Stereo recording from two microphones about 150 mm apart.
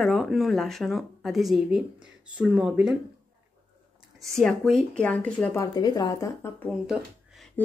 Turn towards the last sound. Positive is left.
turn(degrees=10)  # may be behind; listen again after turning